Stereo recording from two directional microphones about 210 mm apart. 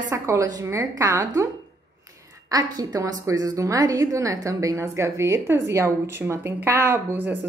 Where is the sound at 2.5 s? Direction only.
15° right (ahead or behind).